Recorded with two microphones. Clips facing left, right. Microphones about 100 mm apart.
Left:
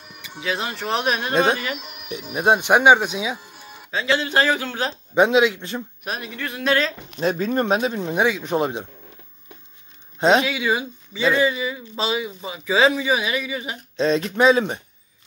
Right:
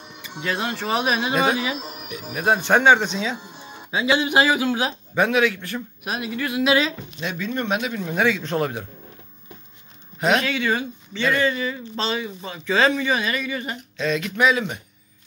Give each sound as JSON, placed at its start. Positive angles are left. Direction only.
{"t": 0.4, "sound": "speech", "side_deg": 5}
{"t": 1.8, "sound": "speech", "side_deg": -35}
{"t": 2.3, "sound": "speech", "side_deg": 20}
{"t": 3.3, "sound": "music", "side_deg": -20}
{"t": 3.9, "sound": "speech", "side_deg": -15}
{"t": 5.1, "sound": "speech", "side_deg": 20}
{"t": 6.0, "sound": "speech", "side_deg": 0}
{"t": 7.2, "sound": "speech", "side_deg": 40}
{"t": 10.1, "sound": "speech", "side_deg": 30}
{"t": 10.4, "sound": "speech", "side_deg": 10}
{"t": 13.9, "sound": "speech", "side_deg": 30}